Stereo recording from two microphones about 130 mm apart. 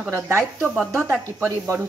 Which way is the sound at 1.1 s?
15° right (ahead or behind).